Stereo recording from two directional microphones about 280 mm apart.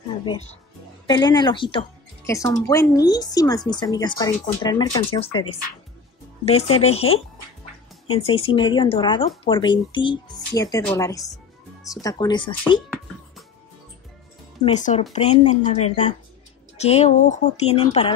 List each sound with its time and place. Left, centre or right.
1.0 s speech: centre
6.4 s a woman's voice: left
14.6 s a woman's voice: left